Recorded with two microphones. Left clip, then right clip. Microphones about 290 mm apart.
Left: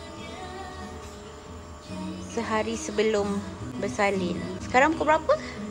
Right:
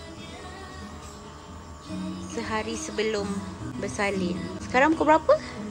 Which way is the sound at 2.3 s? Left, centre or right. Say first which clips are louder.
Left 3 dB; centre.